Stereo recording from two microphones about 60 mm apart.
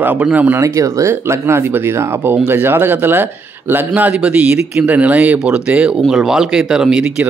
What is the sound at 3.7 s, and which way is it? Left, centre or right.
Speech, right.